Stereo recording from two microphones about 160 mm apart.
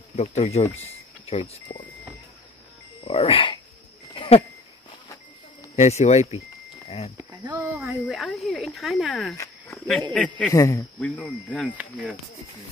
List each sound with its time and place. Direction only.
0.1 s speech: 45° left (ahead or behind)
3.1 s speech: 35° left (ahead or behind)
4.1 s a sound: 35° left (ahead or behind)
5.8 s speech: 45° left (ahead or behind)
7.2 s a sound: 15° right (ahead or behind)
8.1 s speech: centre (ahead or behind)
9.7 s a sound: 5° left (ahead or behind)
10.5 s speech: 20° left (ahead or behind)
11.0 s speech: 10° left (ahead or behind)
11.7 s speech: 10° right (ahead or behind)